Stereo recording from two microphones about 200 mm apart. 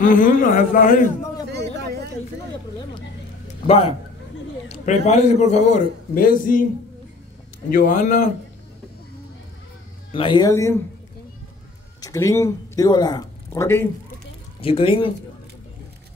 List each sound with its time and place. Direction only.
0.0 s a man's voice: 45° left (ahead or behind)
1.5 s a sound: 55° right (ahead or behind)
3.6 s a man's voice: 30° left (ahead or behind); by 6.6 s 45° left (ahead or behind)
7.7 s a man's voice: 40° left (ahead or behind)
10.1 s speech: 25° left (ahead or behind)
12.0 s speech: 15° left (ahead or behind)
14.6 s speech: 30° left (ahead or behind)